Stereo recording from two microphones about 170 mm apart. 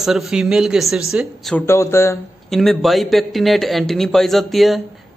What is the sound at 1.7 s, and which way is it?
Speech, 15° left (ahead or behind).